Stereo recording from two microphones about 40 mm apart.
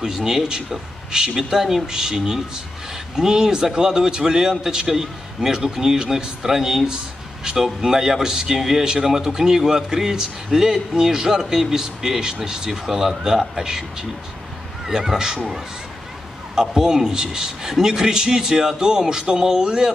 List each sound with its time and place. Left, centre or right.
0.0 s speech: centre